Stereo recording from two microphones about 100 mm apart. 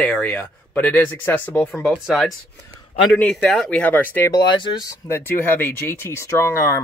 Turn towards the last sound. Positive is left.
turn(degrees=30)  # may be behind; listen again after turning